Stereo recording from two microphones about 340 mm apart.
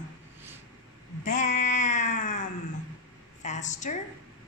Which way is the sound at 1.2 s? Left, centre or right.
Left.